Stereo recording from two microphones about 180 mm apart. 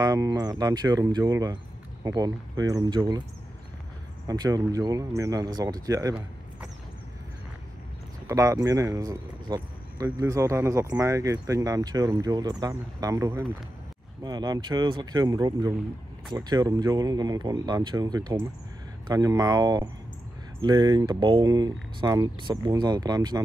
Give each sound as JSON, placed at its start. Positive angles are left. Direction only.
{"t": 0.0, "sound": "speech", "side_deg": -20}
{"t": 4.3, "sound": "speech", "side_deg": -20}
{"t": 8.3, "sound": "speech", "side_deg": -15}